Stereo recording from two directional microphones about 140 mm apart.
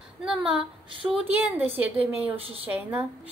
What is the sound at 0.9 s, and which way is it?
Speech, 40° right (ahead or behind).